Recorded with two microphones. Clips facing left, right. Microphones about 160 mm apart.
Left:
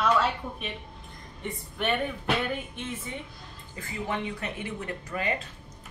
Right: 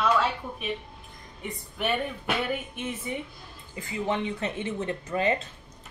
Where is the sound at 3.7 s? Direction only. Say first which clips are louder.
Right 4 dB; 20° right (ahead or behind).